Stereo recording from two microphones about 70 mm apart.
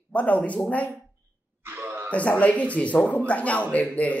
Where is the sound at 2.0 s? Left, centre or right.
Left.